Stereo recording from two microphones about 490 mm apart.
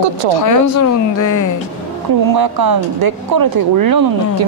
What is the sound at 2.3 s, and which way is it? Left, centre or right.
Speech, right.